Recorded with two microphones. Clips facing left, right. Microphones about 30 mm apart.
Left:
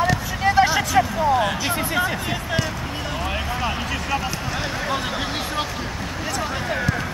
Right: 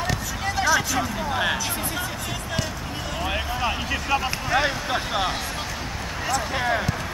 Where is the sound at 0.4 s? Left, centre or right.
Left.